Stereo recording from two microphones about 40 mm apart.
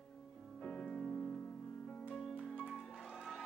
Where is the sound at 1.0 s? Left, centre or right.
Left.